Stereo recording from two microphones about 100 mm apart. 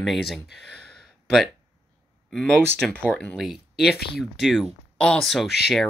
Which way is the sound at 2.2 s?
5° left (ahead or behind).